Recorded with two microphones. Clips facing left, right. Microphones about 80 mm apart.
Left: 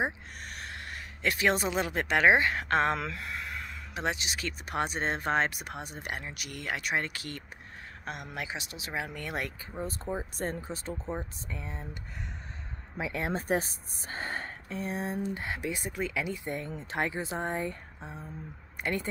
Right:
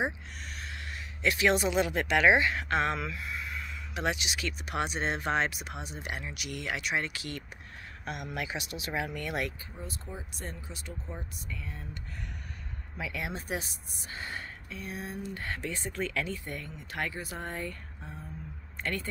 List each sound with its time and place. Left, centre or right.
0.0 s speech: left
3.1 s a sound: left
3.9 s speech: left
15.3 s speech: centre